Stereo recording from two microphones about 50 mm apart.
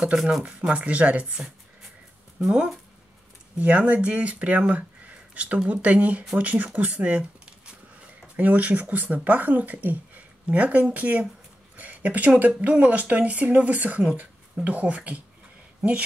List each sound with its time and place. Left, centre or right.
0.2 s speech: centre; by 1.2 s right
2.3 s speech: centre
3.5 s speech: right
6.3 s a sound: right
8.4 s speech: right
11.7 s a sound: right
12.4 s speech: right